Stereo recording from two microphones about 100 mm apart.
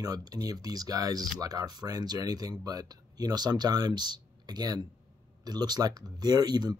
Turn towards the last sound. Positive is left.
turn(degrees=-45)  # may be behind; listen again after turning